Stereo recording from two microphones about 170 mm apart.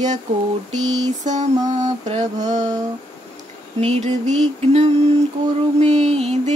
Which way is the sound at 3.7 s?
35° right (ahead or behind).